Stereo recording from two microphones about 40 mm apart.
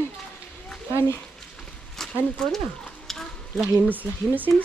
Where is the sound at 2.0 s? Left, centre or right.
Centre.